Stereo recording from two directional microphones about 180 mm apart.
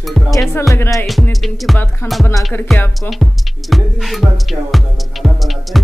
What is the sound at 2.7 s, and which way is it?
Music, centre (ahead or behind).